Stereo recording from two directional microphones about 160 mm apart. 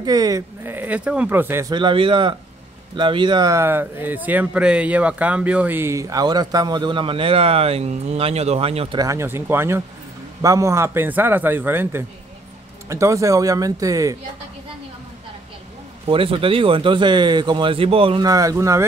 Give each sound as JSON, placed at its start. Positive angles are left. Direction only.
{"t": 0.0, "sound": "speech", "side_deg": -25}
{"t": 1.7, "sound": "speech", "side_deg": -30}
{"t": 9.0, "sound": "speech", "side_deg": -15}
{"t": 16.1, "sound": "speech", "side_deg": -35}
{"t": 18.2, "sound": "speech", "side_deg": -20}